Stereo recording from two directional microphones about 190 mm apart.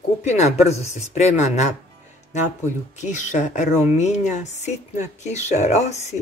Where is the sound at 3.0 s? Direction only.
40° left (ahead or behind).